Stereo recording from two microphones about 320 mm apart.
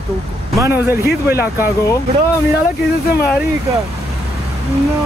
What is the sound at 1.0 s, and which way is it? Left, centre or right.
Speech, left.